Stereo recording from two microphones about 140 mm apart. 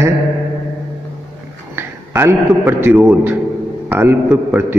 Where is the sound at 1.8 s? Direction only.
15° right (ahead or behind).